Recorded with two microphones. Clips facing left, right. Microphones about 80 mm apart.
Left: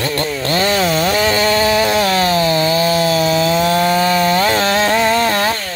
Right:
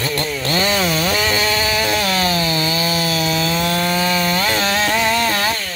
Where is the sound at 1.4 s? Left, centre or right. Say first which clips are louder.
Left 5 dB; left.